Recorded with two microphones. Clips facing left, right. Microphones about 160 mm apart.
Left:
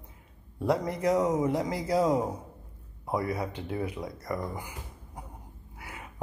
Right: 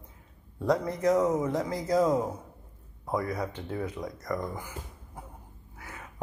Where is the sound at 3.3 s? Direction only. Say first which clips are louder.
Even; 10° left (ahead or behind).